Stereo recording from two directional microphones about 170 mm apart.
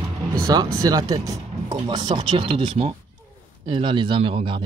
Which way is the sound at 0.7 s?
20° right (ahead or behind).